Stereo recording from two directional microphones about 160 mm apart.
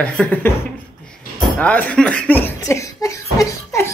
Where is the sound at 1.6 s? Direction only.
5° left (ahead or behind).